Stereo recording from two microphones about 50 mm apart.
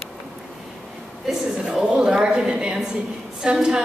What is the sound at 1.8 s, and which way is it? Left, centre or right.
A woman's voice, centre.